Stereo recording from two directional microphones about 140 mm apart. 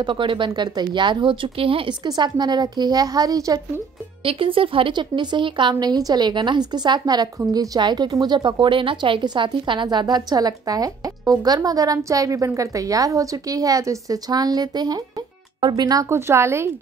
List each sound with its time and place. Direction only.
0.0 s speech: 35° right (ahead or behind)
2.0 s a woman's voice: 30° right (ahead or behind)
4.2 s a woman's voice: 40° right (ahead or behind); by 16.7 s 20° right (ahead or behind)